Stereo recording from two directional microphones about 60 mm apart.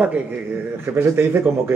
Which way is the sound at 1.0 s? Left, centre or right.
Right.